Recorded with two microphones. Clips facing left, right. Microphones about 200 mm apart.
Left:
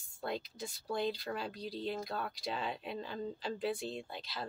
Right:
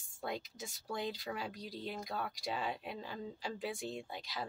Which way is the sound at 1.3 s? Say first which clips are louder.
Left 3 dB; 15° right (ahead or behind).